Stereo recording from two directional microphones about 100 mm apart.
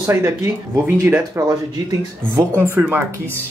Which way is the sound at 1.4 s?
40° right (ahead or behind).